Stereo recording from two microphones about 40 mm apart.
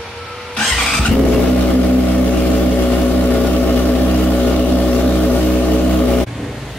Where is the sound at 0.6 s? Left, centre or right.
Centre.